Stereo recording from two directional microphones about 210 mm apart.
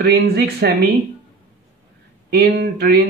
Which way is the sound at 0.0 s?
50° right (ahead or behind).